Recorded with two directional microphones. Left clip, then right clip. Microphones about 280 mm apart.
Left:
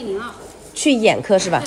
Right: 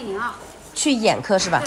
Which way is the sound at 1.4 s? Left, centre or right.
Right.